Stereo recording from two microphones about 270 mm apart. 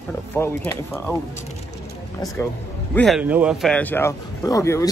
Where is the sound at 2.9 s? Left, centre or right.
Centre.